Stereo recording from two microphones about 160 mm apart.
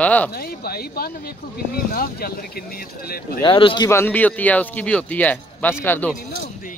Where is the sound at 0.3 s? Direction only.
70° left (ahead or behind).